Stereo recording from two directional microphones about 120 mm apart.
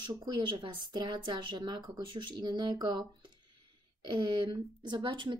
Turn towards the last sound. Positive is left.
turn(degrees=-40)  # may be behind; listen again after turning